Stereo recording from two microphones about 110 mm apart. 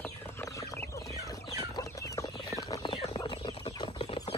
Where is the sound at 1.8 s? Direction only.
30° left (ahead or behind).